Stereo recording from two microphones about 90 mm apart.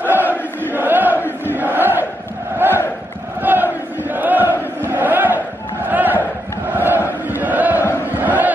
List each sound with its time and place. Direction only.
0.0 s chant: 20° right (ahead or behind)
1.5 s crowd: 20° right (ahead or behind)
6.7 s chant: 20° right (ahead or behind)
8.1 s crowd: 20° right (ahead or behind)